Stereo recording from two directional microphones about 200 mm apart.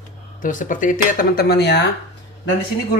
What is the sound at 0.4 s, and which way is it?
Speech, 40° left (ahead or behind).